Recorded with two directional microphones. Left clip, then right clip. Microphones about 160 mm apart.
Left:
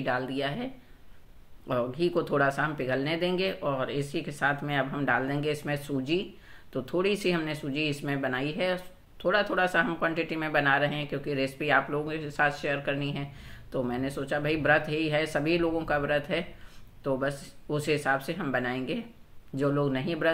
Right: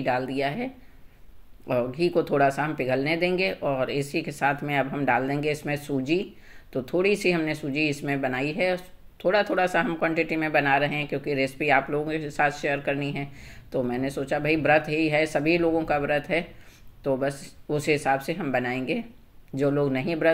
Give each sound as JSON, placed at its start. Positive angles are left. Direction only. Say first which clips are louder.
{"t": 0.0, "sound": "speech", "louder": "right 4 dB", "side_deg": -15}
{"t": 1.7, "sound": "speech", "louder": "right 4 dB", "side_deg": -15}